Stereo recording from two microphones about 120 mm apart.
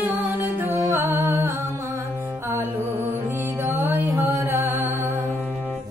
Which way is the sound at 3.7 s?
20° right (ahead or behind).